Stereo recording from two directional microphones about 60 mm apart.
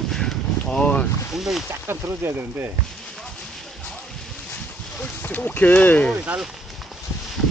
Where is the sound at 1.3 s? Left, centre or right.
Centre.